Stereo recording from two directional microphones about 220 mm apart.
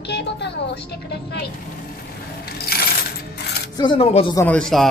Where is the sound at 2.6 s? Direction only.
45° left (ahead or behind).